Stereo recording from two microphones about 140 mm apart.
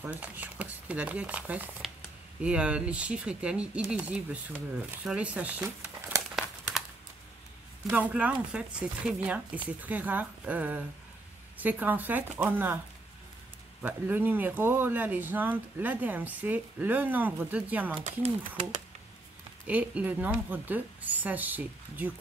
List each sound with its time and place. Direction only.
0.0 s speech: 10° right (ahead or behind)
7.9 s speech: 10° right (ahead or behind)
13.8 s speech: 15° right (ahead or behind)
18.0 s speech: 55° right (ahead or behind)
19.6 s speech: 10° right (ahead or behind)